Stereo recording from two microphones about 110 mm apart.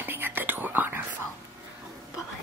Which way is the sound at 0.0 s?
20° right (ahead or behind).